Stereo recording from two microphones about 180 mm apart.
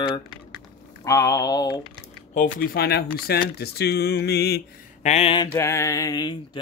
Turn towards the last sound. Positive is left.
turn(degrees=25)  # may be behind; listen again after turning